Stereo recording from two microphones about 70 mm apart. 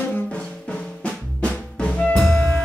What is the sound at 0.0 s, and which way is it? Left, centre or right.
Drum, left.